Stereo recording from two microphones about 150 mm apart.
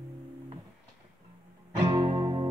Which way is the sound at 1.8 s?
30° right (ahead or behind).